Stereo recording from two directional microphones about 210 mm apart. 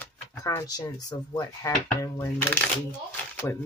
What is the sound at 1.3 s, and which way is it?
Dishes, 20° left (ahead or behind).